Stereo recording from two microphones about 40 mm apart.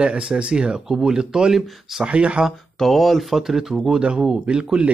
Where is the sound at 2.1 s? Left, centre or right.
Right.